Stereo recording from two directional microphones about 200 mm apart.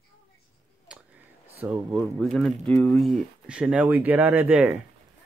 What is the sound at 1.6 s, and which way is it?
Speech, centre (ahead or behind).